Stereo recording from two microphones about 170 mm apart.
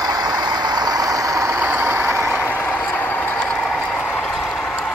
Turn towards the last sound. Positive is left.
turn(degrees=5)  # may be behind; listen again after turning